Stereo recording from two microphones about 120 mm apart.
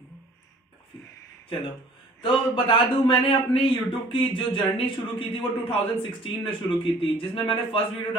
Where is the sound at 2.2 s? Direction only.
45° left (ahead or behind).